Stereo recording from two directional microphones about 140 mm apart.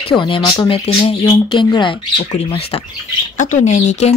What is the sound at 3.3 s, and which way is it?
Speech, 60° left (ahead or behind).